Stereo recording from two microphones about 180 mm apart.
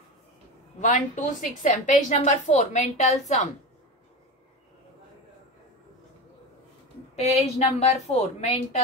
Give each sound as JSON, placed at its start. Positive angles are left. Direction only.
{"t": 0.7, "sound": "a woman's voice", "side_deg": 40}
{"t": 7.2, "sound": "a woman's voice", "side_deg": 40}